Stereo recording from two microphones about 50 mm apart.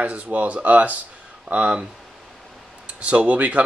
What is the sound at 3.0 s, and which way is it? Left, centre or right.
Speech, right.